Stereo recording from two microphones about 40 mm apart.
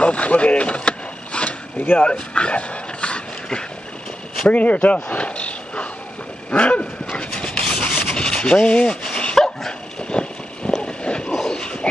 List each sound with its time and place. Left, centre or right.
0.0 s mechanisms: left
2.0 s speech: left
4.5 s a sound: left
7.3 s rub: left
9.4 s dog: centre
10.0 s vehicle: left
10.8 s a sound: left